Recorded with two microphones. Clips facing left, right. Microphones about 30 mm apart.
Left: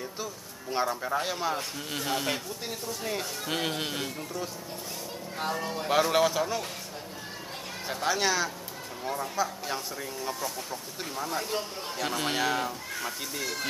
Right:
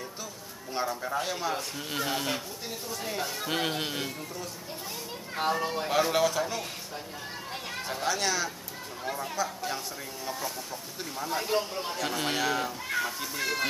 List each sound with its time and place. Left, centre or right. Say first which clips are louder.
0.2 s a sound: left 3 dB; centre
1.5 s speech: even; centre
5.4 s speech: right 3 dB; centre
5.9 s speech: left 2 dB; centre
7.9 s speech: left 2 dB; centre
9.0 s speech: left 1 dB; centre
10.2 s speech: even; centre
13.4 s speech: right 5 dB; right